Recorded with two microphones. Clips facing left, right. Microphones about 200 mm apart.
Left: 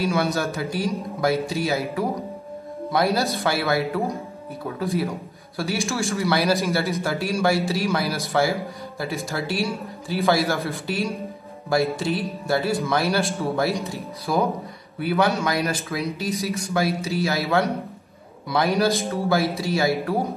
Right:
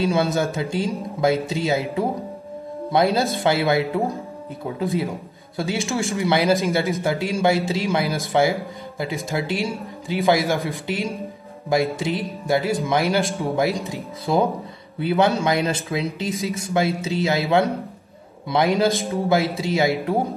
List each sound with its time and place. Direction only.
0.1 s a man's voice: 20° right (ahead or behind)
5.6 s a man's voice: 15° right (ahead or behind)